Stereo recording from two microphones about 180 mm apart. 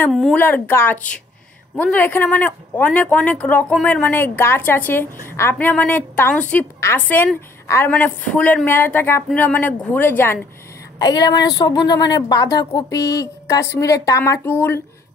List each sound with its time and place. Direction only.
0.1 s speech: centre (ahead or behind)
0.4 s speech: 10° left (ahead or behind)
11.0 s speech: 25° left (ahead or behind)